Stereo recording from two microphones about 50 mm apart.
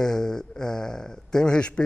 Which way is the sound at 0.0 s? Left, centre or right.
Centre.